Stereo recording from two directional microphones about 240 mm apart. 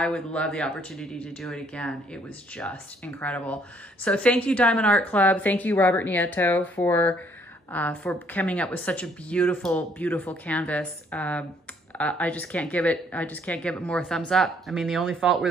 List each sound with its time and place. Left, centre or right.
0.0 s a woman's voice: centre